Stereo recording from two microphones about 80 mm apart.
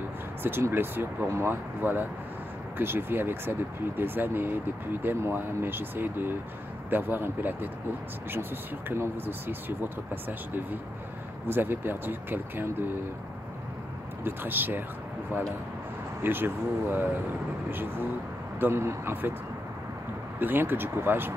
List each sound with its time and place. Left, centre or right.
0.4 s speech: right
14.2 s speech: right
16.2 s a man's voice: right
20.3 s speech: right